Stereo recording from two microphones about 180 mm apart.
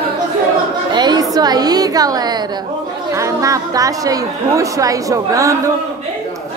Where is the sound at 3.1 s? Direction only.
15° right (ahead or behind).